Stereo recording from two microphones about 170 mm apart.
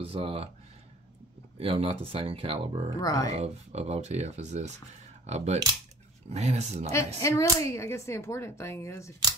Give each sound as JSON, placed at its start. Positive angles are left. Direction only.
{"t": 0.0, "sound": "speech", "side_deg": -35}
{"t": 1.6, "sound": "speech", "side_deg": -35}
{"t": 3.0, "sound": "speech", "side_deg": 20}
{"t": 3.3, "sound": "speech", "side_deg": -40}
{"t": 7.2, "sound": "speech", "side_deg": 20}